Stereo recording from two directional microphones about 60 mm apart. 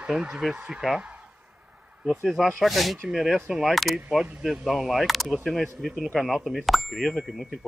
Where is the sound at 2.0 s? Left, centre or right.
Centre.